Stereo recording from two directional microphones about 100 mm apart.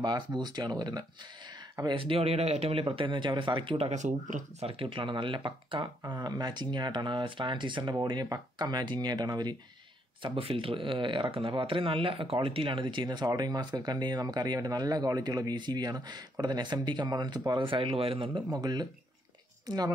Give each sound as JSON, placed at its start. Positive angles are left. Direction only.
{"t": 0.0, "sound": "speech", "side_deg": -45}
{"t": 1.9, "sound": "speech", "side_deg": -65}
{"t": 4.6, "sound": "speech", "side_deg": -65}
{"t": 7.9, "sound": "speech", "side_deg": -40}
{"t": 10.2, "sound": "speech", "side_deg": -65}
{"t": 18.5, "sound": "a woman's voice", "side_deg": -40}